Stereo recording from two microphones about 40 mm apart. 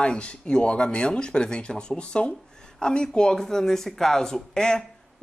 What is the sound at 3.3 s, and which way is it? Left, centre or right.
Speech, centre.